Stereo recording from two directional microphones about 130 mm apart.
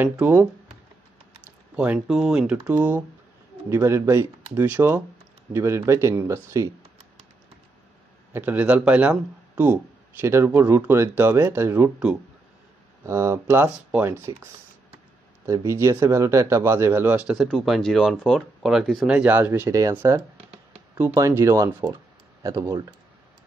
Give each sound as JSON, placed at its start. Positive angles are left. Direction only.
{"t": 0.0, "sound": "speech", "side_deg": -15}
{"t": 1.8, "sound": "speech", "side_deg": -5}
{"t": 8.3, "sound": "speech", "side_deg": -15}
{"t": 13.0, "sound": "speech", "side_deg": -25}
{"t": 19.7, "sound": "speech", "side_deg": -25}
{"t": 20.3, "sound": "a sound", "side_deg": -50}
{"t": 21.0, "sound": "speech", "side_deg": -20}